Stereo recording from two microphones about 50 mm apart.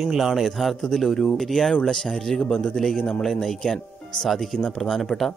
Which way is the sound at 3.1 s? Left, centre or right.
Centre.